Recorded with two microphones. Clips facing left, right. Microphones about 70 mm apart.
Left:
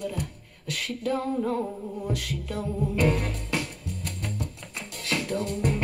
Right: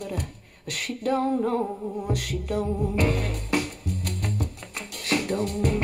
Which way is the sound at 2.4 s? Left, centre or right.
Right.